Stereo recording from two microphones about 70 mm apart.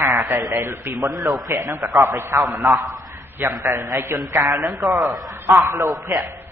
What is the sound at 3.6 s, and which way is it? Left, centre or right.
Speech, right.